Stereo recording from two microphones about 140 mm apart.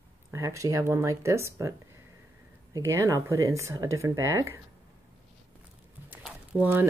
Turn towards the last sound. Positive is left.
turn(degrees=-15)  # may be behind; listen again after turning